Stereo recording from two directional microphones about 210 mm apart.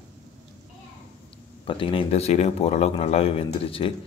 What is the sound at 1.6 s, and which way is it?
A man's voice, 25° left (ahead or behind).